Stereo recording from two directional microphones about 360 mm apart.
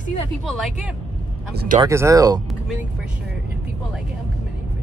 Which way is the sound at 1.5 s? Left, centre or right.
Right.